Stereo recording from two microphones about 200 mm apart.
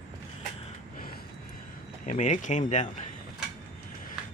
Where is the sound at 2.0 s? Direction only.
35° left (ahead or behind).